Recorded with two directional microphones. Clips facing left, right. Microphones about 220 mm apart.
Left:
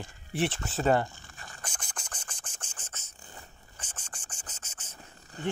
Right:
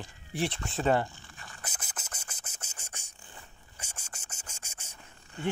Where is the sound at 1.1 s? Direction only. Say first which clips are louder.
Left 1 dB; 40° left (ahead or behind).